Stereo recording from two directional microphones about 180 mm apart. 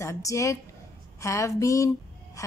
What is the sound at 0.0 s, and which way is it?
A woman's voice, 15° left (ahead or behind).